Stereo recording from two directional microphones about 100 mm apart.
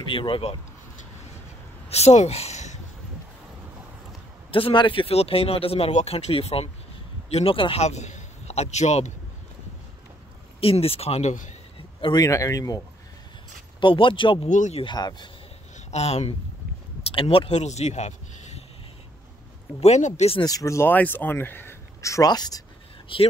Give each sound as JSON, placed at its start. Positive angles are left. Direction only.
{"t": 0.1, "sound": "speech", "side_deg": 60}
{"t": 1.9, "sound": "speech", "side_deg": 90}
{"t": 4.5, "sound": "speech", "side_deg": 65}
{"t": 8.5, "sound": "speech", "side_deg": 90}
{"t": 10.6, "sound": "speech", "side_deg": 70}
{"t": 12.2, "sound": "speech", "side_deg": 35}
{"t": 13.7, "sound": "speech", "side_deg": 55}
{"t": 14.9, "sound": "speech", "side_deg": 45}
{"t": 15.9, "sound": "speech", "side_deg": 90}
{"t": 17.0, "sound": "speech", "side_deg": 65}
{"t": 19.8, "sound": "speech", "side_deg": 90}
{"t": 20.4, "sound": "speech", "side_deg": 35}
{"t": 20.9, "sound": "speech", "side_deg": 15}
{"t": 23.1, "sound": "speech", "side_deg": 60}